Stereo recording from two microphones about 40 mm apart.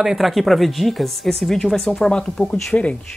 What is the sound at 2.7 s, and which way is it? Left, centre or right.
Speech, left.